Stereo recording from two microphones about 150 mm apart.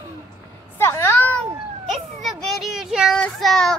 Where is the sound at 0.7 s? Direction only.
15° left (ahead or behind).